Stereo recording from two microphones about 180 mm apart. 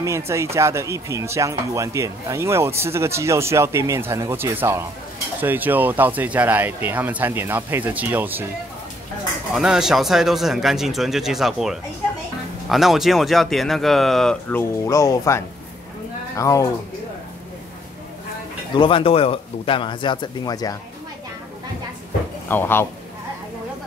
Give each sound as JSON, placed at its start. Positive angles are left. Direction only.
{"t": 0.0, "sound": "speech", "side_deg": -15}
{"t": 9.5, "sound": "speech", "side_deg": -5}
{"t": 18.7, "sound": "speech", "side_deg": 30}
{"t": 22.5, "sound": "speech", "side_deg": 10}